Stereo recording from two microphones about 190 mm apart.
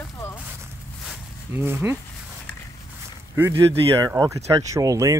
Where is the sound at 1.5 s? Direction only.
10° right (ahead or behind).